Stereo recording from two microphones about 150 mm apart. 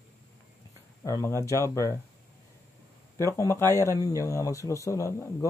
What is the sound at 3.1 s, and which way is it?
Speech, 20° left (ahead or behind).